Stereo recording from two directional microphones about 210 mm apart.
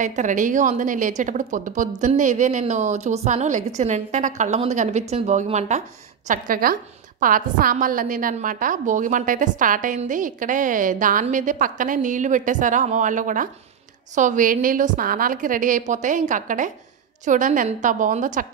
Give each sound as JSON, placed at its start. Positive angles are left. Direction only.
{"t": 0.0, "sound": "speech", "side_deg": -35}